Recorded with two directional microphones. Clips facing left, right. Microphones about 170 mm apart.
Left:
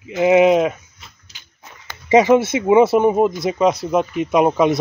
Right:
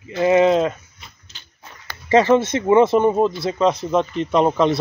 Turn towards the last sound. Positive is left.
turn(degrees=10)  # may be behind; listen again after turning